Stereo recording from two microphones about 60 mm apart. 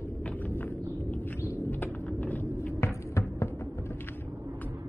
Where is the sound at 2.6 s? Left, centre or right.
Left.